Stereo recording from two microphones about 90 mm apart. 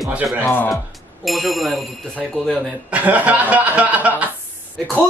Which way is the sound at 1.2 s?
Centre (ahead or behind).